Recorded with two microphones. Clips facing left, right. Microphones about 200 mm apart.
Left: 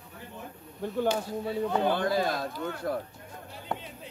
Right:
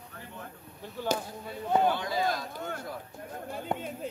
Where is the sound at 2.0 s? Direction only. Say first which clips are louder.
Left 3 dB; 60° left (ahead or behind).